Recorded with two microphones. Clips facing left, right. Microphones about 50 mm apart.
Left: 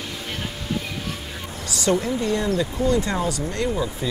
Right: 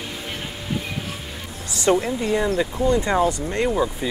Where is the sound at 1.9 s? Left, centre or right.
Right.